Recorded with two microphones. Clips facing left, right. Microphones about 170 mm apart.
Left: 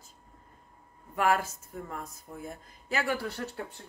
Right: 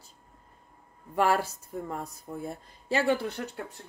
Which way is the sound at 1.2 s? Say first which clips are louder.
Right 2 dB; 35° right (ahead or behind).